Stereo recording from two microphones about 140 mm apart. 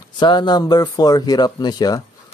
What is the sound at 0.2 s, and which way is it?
Speech, 30° left (ahead or behind).